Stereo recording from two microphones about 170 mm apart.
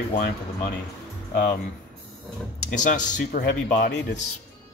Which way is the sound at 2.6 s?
45° left (ahead or behind).